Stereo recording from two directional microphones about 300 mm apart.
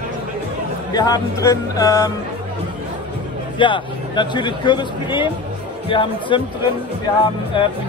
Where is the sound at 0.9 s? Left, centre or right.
Centre.